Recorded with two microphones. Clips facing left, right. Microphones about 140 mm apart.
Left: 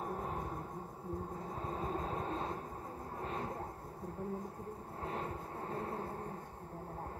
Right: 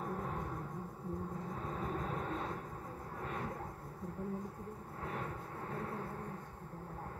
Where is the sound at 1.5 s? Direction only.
25° left (ahead or behind).